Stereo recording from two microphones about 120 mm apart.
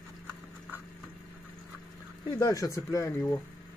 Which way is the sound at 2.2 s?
30° left (ahead or behind).